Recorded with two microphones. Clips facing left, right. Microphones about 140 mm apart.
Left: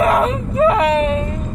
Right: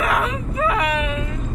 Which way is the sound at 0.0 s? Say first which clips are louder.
Left 7 dB; 35° left (ahead or behind).